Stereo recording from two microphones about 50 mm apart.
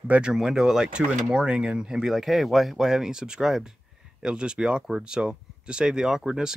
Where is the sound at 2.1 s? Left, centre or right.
Centre.